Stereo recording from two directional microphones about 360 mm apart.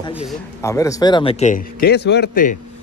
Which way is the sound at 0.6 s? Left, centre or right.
Centre.